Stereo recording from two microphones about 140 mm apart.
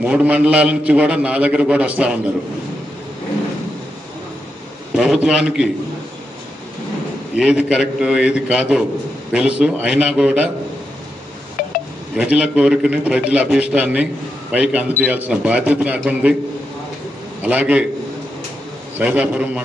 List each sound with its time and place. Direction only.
0.0 s a man's voice: 10° right (ahead or behind)
4.9 s a man's voice: 5° right (ahead or behind)
7.3 s a man's voice: 5° right (ahead or behind)
11.6 s telephone dialing: 90° left
12.2 s a man's voice: 5° right (ahead or behind)
17.4 s a man's voice: 10° right (ahead or behind)
18.9 s a man's voice: 10° right (ahead or behind)